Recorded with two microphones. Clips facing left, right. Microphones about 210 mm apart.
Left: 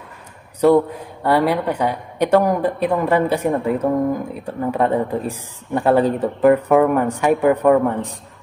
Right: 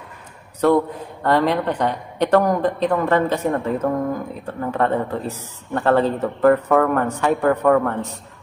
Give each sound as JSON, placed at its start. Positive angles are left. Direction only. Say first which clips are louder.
{"t": 0.6, "sound": "a woman's voice", "louder": "left 3 dB", "side_deg": 10}